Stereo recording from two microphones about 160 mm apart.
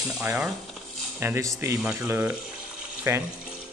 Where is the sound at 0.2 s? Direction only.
20° right (ahead or behind).